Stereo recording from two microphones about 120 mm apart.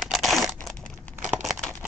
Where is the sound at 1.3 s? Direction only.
Centre (ahead or behind).